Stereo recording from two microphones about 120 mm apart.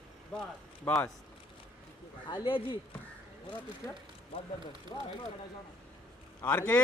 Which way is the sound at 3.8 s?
20° left (ahead or behind).